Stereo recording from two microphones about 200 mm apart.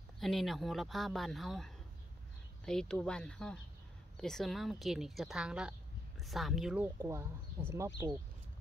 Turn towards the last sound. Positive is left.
turn(degrees=-15)  # may be behind; listen again after turning